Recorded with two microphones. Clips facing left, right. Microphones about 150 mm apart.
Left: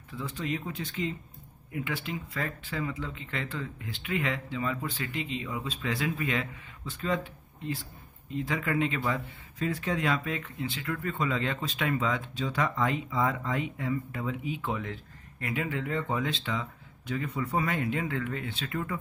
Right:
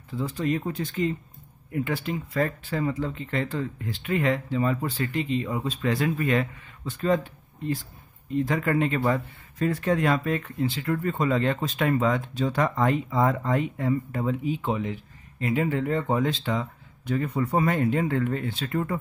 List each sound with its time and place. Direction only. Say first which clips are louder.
0.1 s speech: right 7 dB; 40° right (ahead or behind)
8.4 s speech: right 5 dB; 45° right (ahead or behind)
14.7 s speech: right 6 dB; 20° right (ahead or behind)
15.5 s speech: right 6 dB; 40° right (ahead or behind)